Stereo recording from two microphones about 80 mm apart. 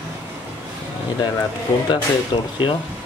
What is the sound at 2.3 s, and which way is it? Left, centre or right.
Speech, left.